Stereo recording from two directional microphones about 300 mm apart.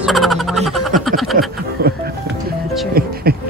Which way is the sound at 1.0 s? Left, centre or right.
Centre.